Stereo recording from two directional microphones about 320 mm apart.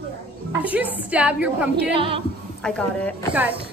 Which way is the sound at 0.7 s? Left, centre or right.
Centre.